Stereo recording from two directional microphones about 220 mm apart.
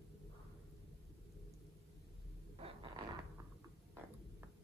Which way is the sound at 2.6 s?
20° right (ahead or behind).